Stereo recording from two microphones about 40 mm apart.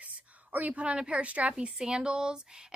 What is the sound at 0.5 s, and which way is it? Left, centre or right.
Speech, right.